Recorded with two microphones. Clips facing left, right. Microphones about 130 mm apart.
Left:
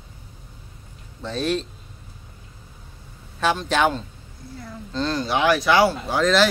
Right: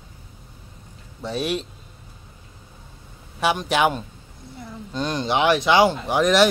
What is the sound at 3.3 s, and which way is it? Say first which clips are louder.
Speech: even; 15° right (ahead or behind).